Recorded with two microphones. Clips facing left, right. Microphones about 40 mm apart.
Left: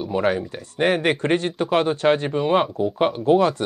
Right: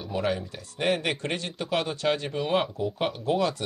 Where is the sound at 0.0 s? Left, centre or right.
Left.